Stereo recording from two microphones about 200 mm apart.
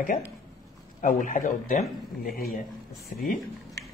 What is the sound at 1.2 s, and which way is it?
Speech, 40° left (ahead or behind).